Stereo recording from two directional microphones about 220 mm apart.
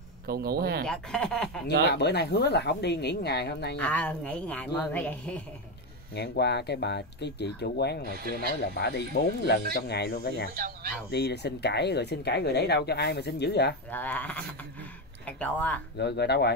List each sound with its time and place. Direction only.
0.3 s speech: 45° right (ahead or behind)
0.8 s speech: 5° left (ahead or behind)
1.9 s speech: 50° left (ahead or behind)
3.7 s speech: 5° left (ahead or behind)
6.1 s speech: 50° left (ahead or behind)
10.5 s speech: 40° right (ahead or behind)
11.1 s speech: 50° left (ahead or behind)
13.8 s speech: 10° left (ahead or behind)
16.0 s speech: 50° left (ahead or behind)